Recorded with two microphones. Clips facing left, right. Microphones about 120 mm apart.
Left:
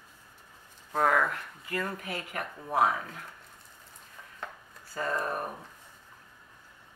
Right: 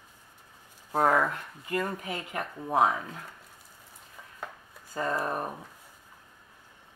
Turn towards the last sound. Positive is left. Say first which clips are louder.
# right 2 dB
turn(degrees=-20)  # may be behind; listen again after turning